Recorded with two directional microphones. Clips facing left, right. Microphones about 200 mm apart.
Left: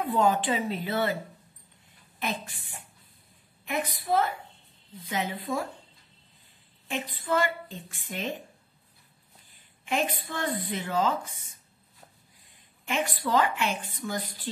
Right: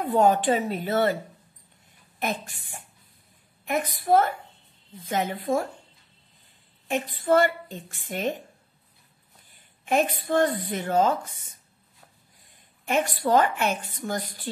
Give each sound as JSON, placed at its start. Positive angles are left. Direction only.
{"t": 0.0, "sound": "speech", "side_deg": -50}
{"t": 2.1, "sound": "speech", "side_deg": -45}
{"t": 7.2, "sound": "speech", "side_deg": -45}
{"t": 9.8, "sound": "speech", "side_deg": -45}
{"t": 12.8, "sound": "speech", "side_deg": -45}